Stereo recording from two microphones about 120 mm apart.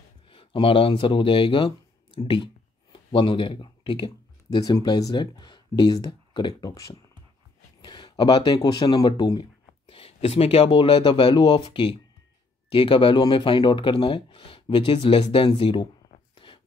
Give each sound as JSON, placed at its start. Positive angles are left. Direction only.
{"t": 0.3, "sound": "speech", "side_deg": 50}
{"t": 2.1, "sound": "a sound", "side_deg": 45}
{"t": 4.8, "sound": "speech", "side_deg": 35}
{"t": 16.4, "sound": "filing", "side_deg": 45}